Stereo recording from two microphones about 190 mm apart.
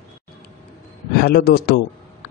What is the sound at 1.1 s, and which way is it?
Speech, 55° left (ahead or behind).